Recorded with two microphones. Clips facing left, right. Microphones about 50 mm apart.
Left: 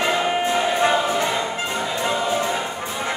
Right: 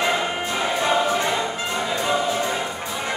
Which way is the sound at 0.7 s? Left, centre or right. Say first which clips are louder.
Left 1 dB; left.